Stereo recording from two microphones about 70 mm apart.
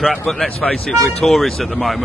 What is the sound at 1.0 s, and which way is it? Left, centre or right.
Speech, centre.